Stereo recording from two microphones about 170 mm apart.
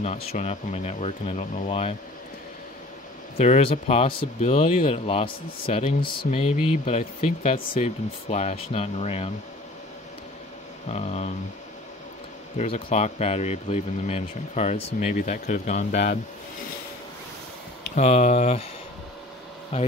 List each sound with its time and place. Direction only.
0.0 s speech: 40° left (ahead or behind)
3.3 s speech: 40° left (ahead or behind)
10.9 s speech: 40° left (ahead or behind)
12.5 s speech: 45° left (ahead or behind)
17.9 s speech: 45° left (ahead or behind)